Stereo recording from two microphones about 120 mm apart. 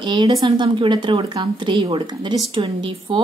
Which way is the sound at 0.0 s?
40° right (ahead or behind).